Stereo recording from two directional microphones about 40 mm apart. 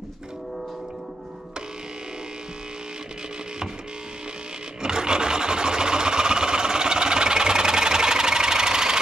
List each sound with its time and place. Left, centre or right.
4.8 s sewing machine: centre